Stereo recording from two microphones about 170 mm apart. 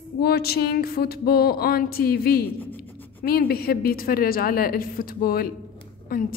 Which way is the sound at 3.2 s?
60° left (ahead or behind).